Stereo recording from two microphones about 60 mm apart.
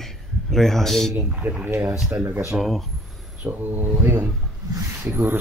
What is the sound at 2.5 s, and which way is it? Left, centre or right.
Speech, right.